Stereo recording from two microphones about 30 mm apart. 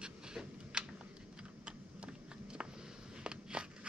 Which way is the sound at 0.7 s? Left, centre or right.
Right.